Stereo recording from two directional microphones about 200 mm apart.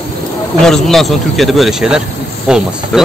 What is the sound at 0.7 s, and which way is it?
Speech, centre (ahead or behind).